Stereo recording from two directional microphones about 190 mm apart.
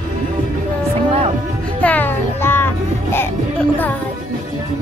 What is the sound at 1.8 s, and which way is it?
Music, 10° left (ahead or behind).